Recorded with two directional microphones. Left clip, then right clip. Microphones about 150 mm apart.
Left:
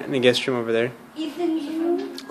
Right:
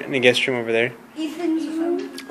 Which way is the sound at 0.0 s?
25° left (ahead or behind).